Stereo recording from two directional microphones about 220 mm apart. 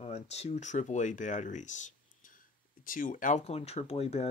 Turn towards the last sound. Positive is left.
turn(degrees=30)  # may be behind; listen again after turning